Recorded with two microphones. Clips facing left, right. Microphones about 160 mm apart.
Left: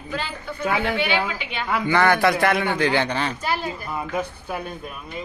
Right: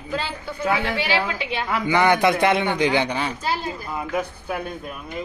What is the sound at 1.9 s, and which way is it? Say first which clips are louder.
A man's voice: right 1 dB; 15° right (ahead or behind).